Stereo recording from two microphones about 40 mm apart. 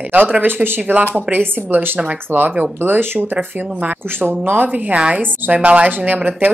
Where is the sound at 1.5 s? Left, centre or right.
Right.